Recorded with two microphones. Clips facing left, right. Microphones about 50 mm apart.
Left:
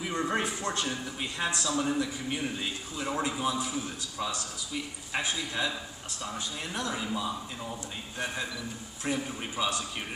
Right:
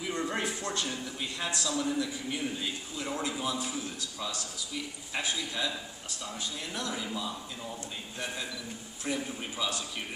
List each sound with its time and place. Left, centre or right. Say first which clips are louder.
0.0 s music: left 2 dB; left
1.4 s a man's voice: left 3 dB; left
9.0 s a man's voice: left 2 dB; left